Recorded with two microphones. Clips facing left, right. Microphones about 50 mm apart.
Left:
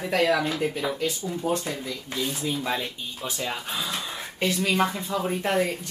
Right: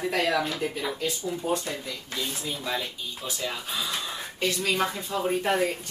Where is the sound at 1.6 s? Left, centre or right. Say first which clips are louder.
Left 2 dB; centre.